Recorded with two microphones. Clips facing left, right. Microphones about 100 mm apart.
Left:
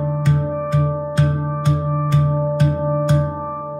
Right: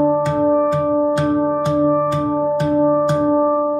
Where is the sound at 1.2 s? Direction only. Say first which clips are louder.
Right 5 dB; 30° right (ahead or behind).